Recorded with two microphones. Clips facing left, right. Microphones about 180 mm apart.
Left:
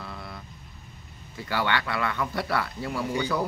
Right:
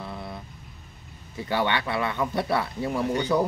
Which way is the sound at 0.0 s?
20° right (ahead or behind).